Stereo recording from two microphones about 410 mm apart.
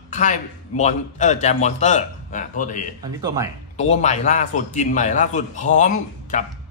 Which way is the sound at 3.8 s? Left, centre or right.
Centre.